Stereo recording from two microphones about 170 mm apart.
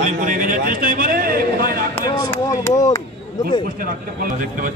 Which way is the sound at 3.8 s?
55° right (ahead or behind).